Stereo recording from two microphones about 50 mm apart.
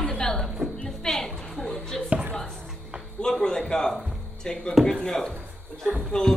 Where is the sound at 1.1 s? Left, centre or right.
Centre.